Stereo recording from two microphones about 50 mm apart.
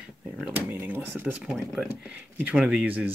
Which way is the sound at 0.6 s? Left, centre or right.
Right.